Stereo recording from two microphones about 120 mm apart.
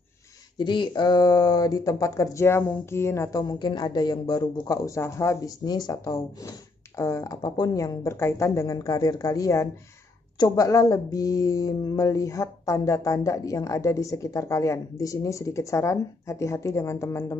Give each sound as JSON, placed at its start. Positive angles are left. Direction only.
{"t": 0.6, "sound": "speech", "side_deg": 40}